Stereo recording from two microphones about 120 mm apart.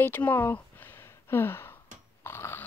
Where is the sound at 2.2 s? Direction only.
20° left (ahead or behind).